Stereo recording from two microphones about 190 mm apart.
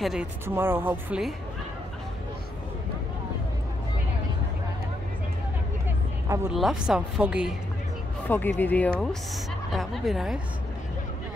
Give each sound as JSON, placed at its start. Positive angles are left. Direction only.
{"t": 0.0, "sound": "speech", "side_deg": -5}
{"t": 6.2, "sound": "a woman's voice", "side_deg": -15}
{"t": 6.5, "sound": "a woman's voice", "side_deg": 0}
{"t": 8.3, "sound": "a woman's voice", "side_deg": 10}